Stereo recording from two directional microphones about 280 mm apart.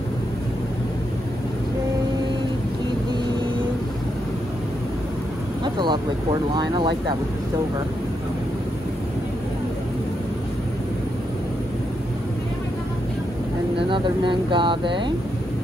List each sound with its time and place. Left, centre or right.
5.6 s speech: centre
13.7 s speech: centre